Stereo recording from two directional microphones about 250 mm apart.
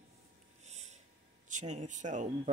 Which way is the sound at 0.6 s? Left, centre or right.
Right.